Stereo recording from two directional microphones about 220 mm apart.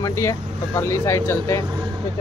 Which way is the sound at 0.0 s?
15° left (ahead or behind).